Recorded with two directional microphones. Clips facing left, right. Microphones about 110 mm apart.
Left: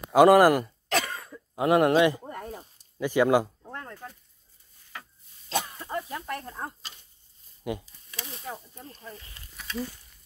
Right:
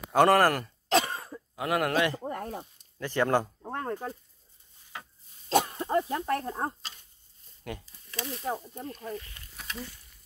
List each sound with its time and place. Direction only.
0.1 s speech: 10° left (ahead or behind)
0.8 s cough: 30° right (ahead or behind)
1.5 s speech: 25° left (ahead or behind)
2.2 s speech: 60° right (ahead or behind)
3.0 s speech: 10° left (ahead or behind)
3.6 s a sound: 45° right (ahead or behind)
5.5 s a sound: 40° right (ahead or behind)
5.9 s speech: 35° right (ahead or behind)
7.6 s a sound: 15° left (ahead or behind)
8.5 s speech: 30° right (ahead or behind)